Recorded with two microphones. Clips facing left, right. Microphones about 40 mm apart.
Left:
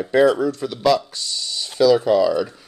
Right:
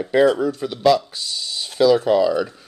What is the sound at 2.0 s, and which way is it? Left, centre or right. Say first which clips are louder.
Speech: even; centre.